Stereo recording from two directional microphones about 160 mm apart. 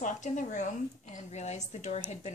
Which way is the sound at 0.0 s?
50° left (ahead or behind).